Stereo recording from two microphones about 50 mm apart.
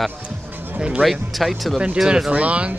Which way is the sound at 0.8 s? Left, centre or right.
Right.